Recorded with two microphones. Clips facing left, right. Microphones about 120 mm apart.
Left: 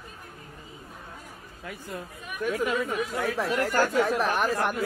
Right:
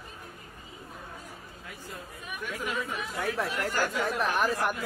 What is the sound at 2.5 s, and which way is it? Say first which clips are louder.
Speech: left 6 dB; 45° left (ahead or behind).